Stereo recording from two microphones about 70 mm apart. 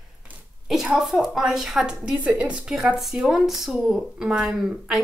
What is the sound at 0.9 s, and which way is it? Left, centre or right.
A woman's voice, centre.